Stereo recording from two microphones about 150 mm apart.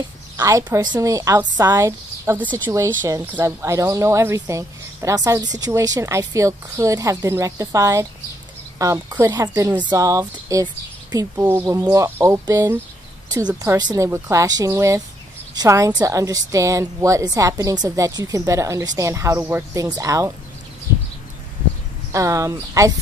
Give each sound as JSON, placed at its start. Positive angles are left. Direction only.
{"t": 0.4, "sound": "speech", "side_deg": -20}
{"t": 22.1, "sound": "speech", "side_deg": -20}